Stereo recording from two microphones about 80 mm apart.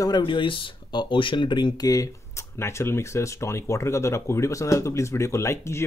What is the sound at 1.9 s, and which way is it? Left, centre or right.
Speech, left.